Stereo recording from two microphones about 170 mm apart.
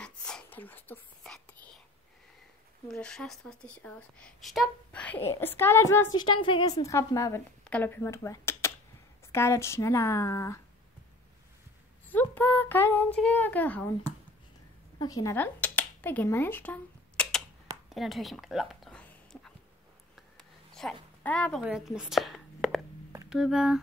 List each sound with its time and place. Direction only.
0.0 s whispering: 5° left (ahead or behind)
2.9 s a woman's voice: 5° left (ahead or behind)
12.1 s a woman's voice: 10° left (ahead or behind)
15.0 s speech: 20° left (ahead or behind)
17.8 s a sound: centre (ahead or behind)
21.6 s a woman's voice: 5° right (ahead or behind)